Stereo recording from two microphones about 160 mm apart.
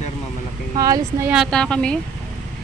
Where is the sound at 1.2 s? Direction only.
Centre (ahead or behind).